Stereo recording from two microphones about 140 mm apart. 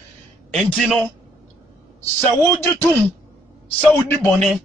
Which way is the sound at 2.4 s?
25° right (ahead or behind).